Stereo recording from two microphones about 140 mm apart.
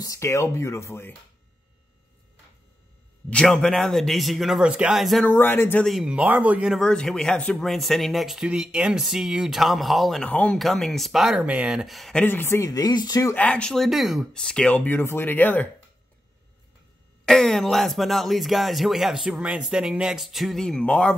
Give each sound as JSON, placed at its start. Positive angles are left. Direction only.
{"t": 0.0, "sound": "speech", "side_deg": 20}
{"t": 3.3, "sound": "speech", "side_deg": 5}
{"t": 5.2, "sound": "speech", "side_deg": 15}
{"t": 5.9, "sound": "speech", "side_deg": -5}
{"t": 13.3, "sound": "speech", "side_deg": 10}
{"t": 17.2, "sound": "speech", "side_deg": 5}